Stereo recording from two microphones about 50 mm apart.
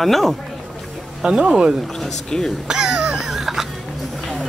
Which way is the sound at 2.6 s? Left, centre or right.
Centre.